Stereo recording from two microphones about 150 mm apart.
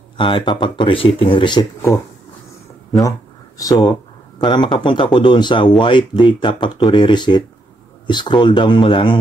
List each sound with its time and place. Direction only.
0.2 s speech: 35° left (ahead or behind)
3.0 s speech: 20° left (ahead or behind)